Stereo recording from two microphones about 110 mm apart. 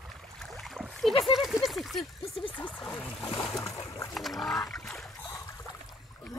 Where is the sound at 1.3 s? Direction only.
Centre (ahead or behind).